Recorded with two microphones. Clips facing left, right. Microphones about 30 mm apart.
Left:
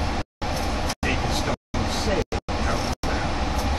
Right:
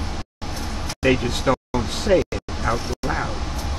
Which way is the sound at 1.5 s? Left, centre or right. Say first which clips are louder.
Right 8 dB; right.